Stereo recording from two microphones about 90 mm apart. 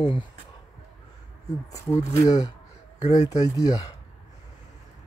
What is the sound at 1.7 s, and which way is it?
Speech, 40° left (ahead or behind).